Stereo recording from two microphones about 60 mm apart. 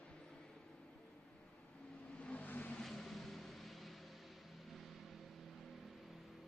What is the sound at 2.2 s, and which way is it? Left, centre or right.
Vehicle, centre.